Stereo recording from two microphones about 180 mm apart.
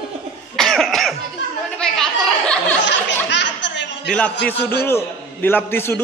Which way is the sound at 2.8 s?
75° left (ahead or behind).